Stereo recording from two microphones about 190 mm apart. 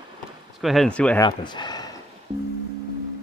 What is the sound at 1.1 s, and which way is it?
Speech, 25° left (ahead or behind).